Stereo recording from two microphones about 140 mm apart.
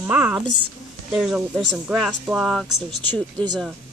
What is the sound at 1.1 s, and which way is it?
Speech, centre (ahead or behind).